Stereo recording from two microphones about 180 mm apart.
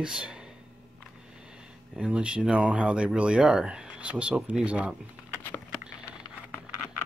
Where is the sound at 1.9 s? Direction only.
5° right (ahead or behind).